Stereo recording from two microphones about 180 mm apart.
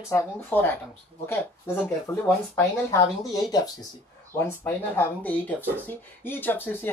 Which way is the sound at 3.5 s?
20° left (ahead or behind).